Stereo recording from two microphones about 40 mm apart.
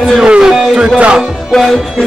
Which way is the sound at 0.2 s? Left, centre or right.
Right.